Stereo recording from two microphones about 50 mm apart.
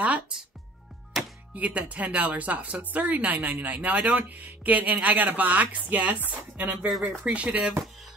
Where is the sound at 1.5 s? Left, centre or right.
Right.